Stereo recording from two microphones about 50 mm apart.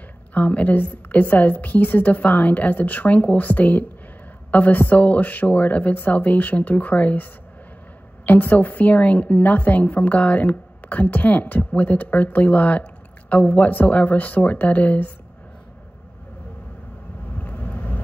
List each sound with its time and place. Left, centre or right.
0.3 s a woman's voice: left
8.3 s a woman's voice: left
17.4 s vehicle: left